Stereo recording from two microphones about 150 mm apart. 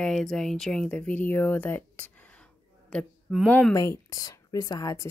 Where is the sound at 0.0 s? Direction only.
5° left (ahead or behind).